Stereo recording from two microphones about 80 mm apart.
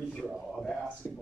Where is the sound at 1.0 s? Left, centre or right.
Left.